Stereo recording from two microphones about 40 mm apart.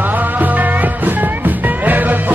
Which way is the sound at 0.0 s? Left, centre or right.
Right.